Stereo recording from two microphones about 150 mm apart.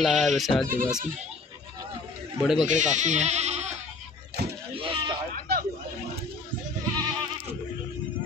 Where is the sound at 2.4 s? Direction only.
5° right (ahead or behind).